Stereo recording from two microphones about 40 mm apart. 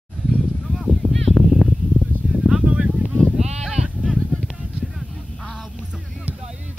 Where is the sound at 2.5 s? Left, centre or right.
Centre.